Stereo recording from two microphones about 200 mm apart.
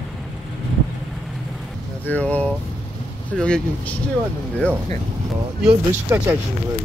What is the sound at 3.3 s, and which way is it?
Vehicle, 5° left (ahead or behind).